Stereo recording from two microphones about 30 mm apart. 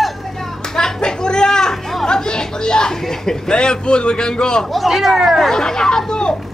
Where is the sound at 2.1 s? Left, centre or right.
Left.